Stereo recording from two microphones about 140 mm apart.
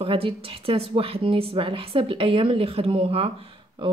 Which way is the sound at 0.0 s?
40° right (ahead or behind).